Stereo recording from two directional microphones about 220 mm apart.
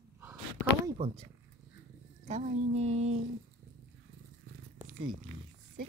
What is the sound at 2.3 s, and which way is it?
Speech, 30° right (ahead or behind).